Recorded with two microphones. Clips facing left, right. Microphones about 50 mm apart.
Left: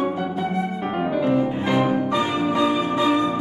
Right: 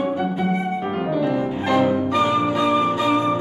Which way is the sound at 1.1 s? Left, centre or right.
Left.